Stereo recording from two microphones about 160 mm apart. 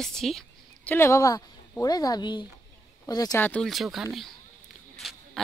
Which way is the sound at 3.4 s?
5° left (ahead or behind).